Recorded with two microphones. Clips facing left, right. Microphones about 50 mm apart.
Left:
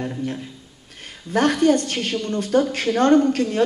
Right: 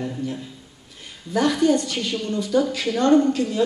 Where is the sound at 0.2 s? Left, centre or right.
Left.